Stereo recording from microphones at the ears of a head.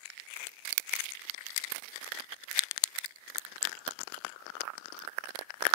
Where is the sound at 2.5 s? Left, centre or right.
Left.